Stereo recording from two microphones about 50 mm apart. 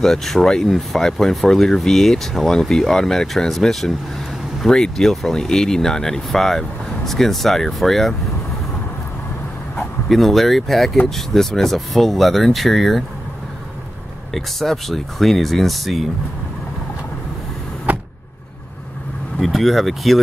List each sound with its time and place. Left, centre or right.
0.0 s speech: centre
10.0 s speech: centre
14.3 s speech: centre
17.9 s power windows: right
19.4 s speech: centre